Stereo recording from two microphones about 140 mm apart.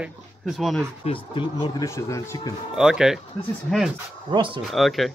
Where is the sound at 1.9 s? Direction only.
25° left (ahead or behind).